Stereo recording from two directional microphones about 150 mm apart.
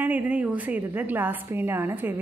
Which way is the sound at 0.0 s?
10° right (ahead or behind).